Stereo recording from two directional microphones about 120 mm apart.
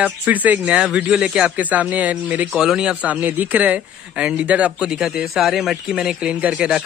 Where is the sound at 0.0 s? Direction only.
15° right (ahead or behind).